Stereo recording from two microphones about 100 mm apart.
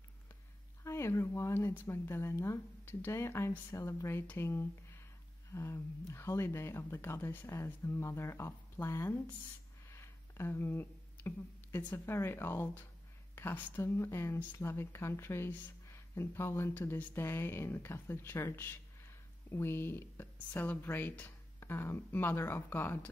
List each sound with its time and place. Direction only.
0.8 s speech: 30° left (ahead or behind)